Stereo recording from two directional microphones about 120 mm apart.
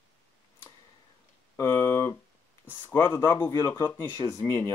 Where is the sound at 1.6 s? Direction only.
25° left (ahead or behind).